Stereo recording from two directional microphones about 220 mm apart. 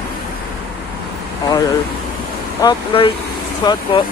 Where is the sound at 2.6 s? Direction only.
20° left (ahead or behind).